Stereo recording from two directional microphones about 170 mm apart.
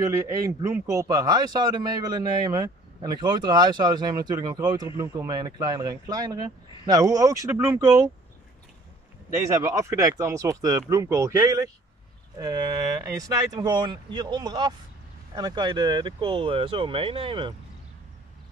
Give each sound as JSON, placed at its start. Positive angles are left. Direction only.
{"t": 0.0, "sound": "speech", "side_deg": -15}
{"t": 9.3, "sound": "speech", "side_deg": -15}
{"t": 13.0, "sound": "speech", "side_deg": -20}